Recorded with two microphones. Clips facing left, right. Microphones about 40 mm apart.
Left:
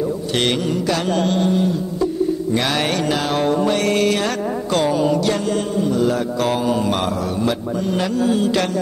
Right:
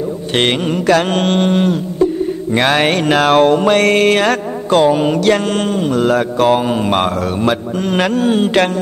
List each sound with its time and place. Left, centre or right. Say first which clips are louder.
0.4 s mantra: right 5 dB; right
2.5 s mantra: right 6 dB; right